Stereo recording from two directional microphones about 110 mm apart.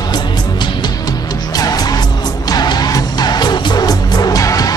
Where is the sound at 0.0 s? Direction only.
40° left (ahead or behind).